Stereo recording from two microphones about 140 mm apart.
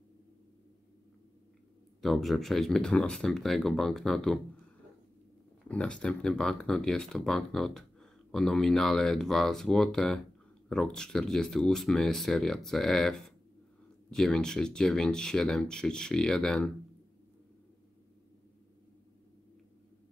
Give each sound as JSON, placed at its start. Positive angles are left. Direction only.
{"t": 2.0, "sound": "speech", "side_deg": 0}
{"t": 5.7, "sound": "speech", "side_deg": 10}
{"t": 14.1, "sound": "speech", "side_deg": 5}